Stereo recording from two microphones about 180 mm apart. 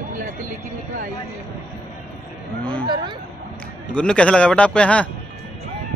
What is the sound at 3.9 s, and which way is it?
A man's voice, 5° left (ahead or behind).